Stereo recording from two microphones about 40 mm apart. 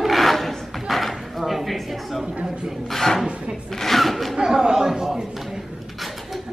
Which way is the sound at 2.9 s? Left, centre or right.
Centre.